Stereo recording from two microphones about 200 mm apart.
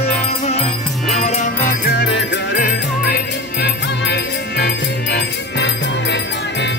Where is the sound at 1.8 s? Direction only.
55° left (ahead or behind).